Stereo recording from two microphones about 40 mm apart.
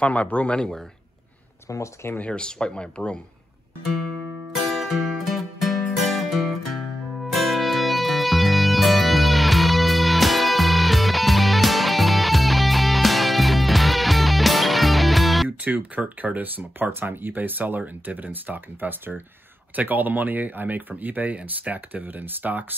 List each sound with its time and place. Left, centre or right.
0.0 s speech: left
2.2 s speech: left
4.6 s music: centre
15.6 s speech: right
19.7 s speech: right